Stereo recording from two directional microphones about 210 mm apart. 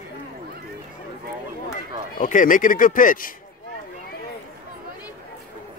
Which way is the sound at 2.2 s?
40° left (ahead or behind).